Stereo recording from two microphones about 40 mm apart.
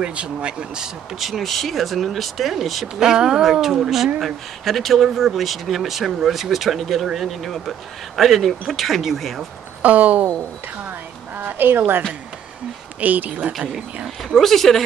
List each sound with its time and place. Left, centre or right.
0.0 s speech: right
1.4 s speech: centre
3.0 s speech: centre
7.4 s speech: centre
9.8 s a sound: right
11.3 s a sound: right
13.0 s speech: right
13.5 s speech: centre
14.3 s speech: centre